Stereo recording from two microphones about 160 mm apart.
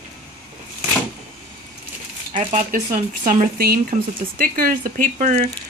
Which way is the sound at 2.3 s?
55° right (ahead or behind).